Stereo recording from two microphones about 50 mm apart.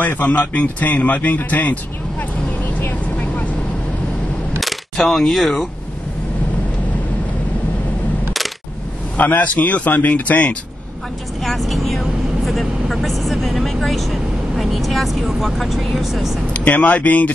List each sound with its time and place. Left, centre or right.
0.0 s speech: left
4.6 s coin: centre
9.1 s speech: left
11.4 s speech: centre
16.5 s speech: left